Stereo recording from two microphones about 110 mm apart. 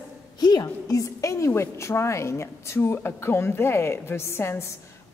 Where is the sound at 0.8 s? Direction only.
30° left (ahead or behind).